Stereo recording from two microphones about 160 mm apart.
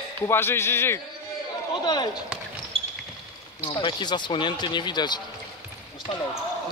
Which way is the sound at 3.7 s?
30° left (ahead or behind).